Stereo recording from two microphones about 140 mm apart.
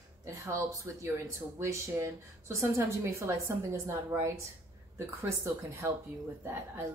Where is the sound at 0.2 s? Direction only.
20° right (ahead or behind).